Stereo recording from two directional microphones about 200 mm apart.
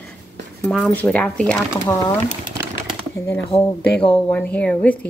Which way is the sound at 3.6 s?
10° left (ahead or behind).